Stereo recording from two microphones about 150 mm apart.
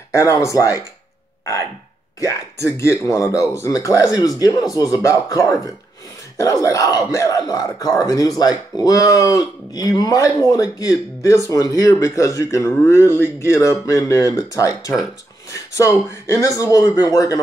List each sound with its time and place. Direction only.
0.1 s speech: 20° left (ahead or behind)
2.1 s speech: 20° left (ahead or behind)